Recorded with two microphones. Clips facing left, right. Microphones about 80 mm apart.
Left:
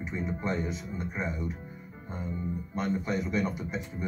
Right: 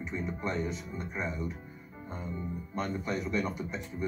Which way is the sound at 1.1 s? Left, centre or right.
Centre.